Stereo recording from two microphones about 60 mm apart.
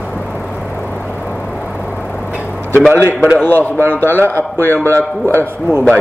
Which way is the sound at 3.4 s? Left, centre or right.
Left.